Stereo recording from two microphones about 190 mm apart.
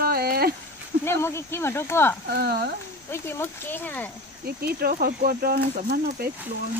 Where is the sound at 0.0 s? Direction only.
55° right (ahead or behind).